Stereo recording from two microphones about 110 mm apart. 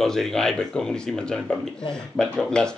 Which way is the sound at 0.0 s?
5° left (ahead or behind).